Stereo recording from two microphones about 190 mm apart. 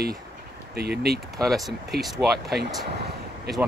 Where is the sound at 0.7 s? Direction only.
55° right (ahead or behind).